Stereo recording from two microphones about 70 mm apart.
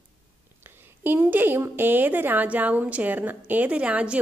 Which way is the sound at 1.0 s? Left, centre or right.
Right.